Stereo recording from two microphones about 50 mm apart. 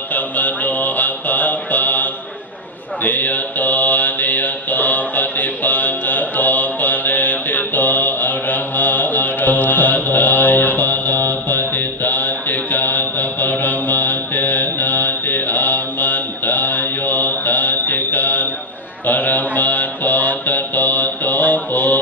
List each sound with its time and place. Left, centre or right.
0.1 s music: left
3.0 s mantra: left